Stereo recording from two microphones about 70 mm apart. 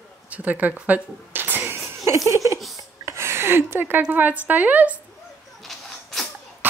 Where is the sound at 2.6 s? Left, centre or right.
Centre.